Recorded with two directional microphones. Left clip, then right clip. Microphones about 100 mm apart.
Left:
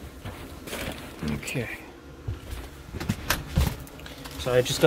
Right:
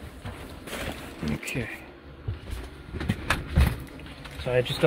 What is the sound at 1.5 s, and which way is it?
Speech, 40° left (ahead or behind).